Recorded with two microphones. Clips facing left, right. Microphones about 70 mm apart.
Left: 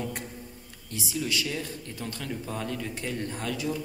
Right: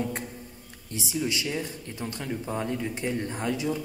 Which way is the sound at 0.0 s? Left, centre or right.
Centre.